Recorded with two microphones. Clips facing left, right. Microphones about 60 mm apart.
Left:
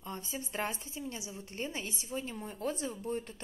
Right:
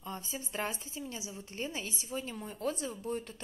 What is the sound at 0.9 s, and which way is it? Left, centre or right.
Speech, left.